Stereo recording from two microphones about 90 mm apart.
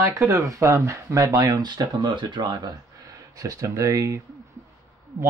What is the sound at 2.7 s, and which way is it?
Speech, 45° right (ahead or behind).